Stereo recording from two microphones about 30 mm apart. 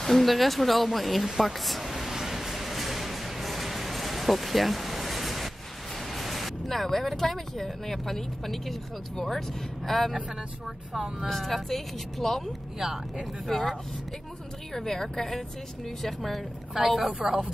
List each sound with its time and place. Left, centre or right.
0.0 s speech: centre
1.3 s a sound: centre
6.1 s speech: centre
9.8 s speech: centre
11.2 s speech: centre
12.7 s speech: centre
13.5 s speech: centre
16.8 s a woman's voice: right